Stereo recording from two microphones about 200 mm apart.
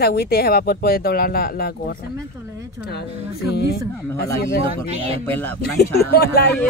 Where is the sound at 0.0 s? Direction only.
50° left (ahead or behind).